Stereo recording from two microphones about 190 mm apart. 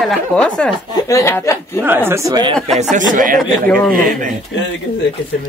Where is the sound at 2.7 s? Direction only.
40° right (ahead or behind).